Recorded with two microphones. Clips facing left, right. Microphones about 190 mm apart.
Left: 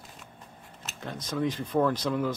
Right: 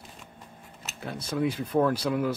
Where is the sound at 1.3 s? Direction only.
10° right (ahead or behind).